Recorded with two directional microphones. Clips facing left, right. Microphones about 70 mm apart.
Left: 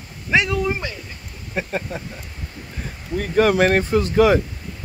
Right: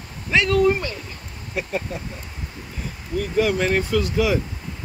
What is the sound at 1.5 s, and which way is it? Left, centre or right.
Speech, left.